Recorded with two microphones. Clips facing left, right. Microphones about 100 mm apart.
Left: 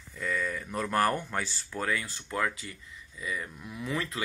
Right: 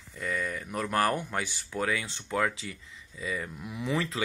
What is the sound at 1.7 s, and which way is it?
Speech, 20° right (ahead or behind).